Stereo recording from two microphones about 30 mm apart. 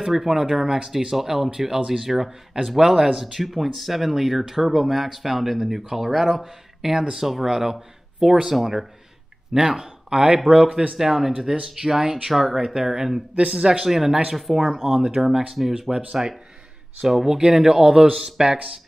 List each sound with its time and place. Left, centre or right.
0.0 s speech: centre
11.0 s speech: centre
12.3 s speech: centre
12.5 s speech: centre
14.6 s speech: centre
17.1 s speech: centre